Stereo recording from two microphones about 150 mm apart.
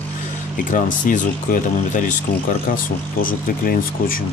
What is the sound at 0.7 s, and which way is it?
Speech, 60° left (ahead or behind).